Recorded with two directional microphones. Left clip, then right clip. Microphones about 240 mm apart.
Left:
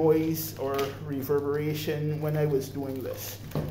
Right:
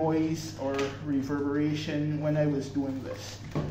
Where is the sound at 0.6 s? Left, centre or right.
Left.